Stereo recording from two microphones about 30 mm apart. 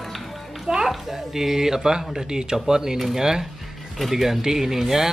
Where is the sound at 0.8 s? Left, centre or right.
Centre.